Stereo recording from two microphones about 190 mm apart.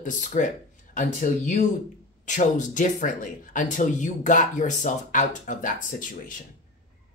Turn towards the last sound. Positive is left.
turn(degrees=45)  # may be behind; listen again after turning